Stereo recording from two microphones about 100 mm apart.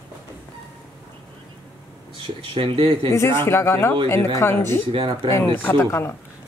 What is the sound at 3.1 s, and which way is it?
Speech, 25° left (ahead or behind).